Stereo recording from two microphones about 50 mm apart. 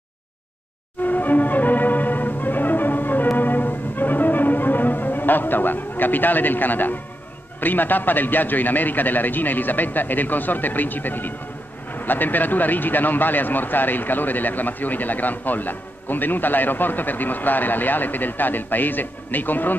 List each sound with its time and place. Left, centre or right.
1.0 s music: left
7.6 s speech: left